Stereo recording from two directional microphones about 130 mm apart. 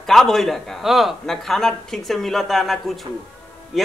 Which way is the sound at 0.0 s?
Centre (ahead or behind).